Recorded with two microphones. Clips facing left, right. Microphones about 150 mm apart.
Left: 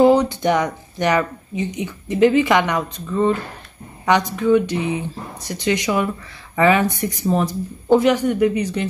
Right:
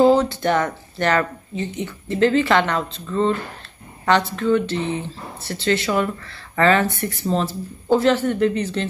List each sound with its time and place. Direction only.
0.0 s speech: 20° left (ahead or behind)